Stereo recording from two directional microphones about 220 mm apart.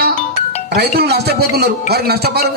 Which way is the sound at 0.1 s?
30° left (ahead or behind).